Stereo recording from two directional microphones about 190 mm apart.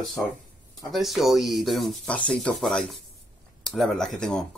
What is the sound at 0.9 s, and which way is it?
Speech, centre (ahead or behind).